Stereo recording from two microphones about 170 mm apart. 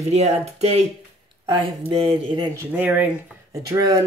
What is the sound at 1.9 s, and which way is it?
Speech, 30° right (ahead or behind).